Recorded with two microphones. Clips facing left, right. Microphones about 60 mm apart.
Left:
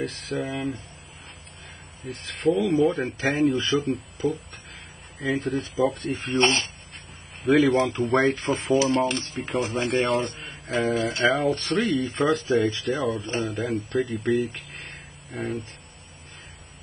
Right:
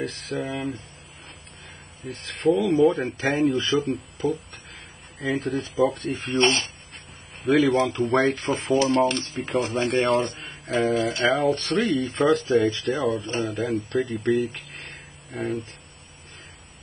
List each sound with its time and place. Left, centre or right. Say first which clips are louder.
0.0 s speech: even; centre
2.0 s speech: right 2 dB; centre
6.3 s speech: right 1 dB; left
7.4 s speech: even; centre